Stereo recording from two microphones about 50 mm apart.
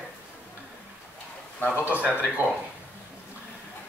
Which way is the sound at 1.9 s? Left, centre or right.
Right.